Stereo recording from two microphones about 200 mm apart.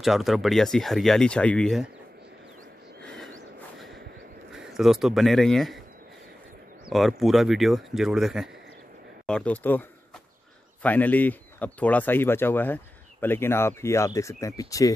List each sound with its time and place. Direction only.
0.0 s speech: centre (ahead or behind)
3.0 s a sound: 5° left (ahead or behind)
4.5 s speech: centre (ahead or behind)
6.9 s speech: centre (ahead or behind); by 15.0 s 15° left (ahead or behind)